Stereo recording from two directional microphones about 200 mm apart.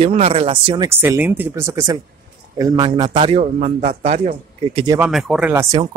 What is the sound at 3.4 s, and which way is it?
Speech, 40° right (ahead or behind).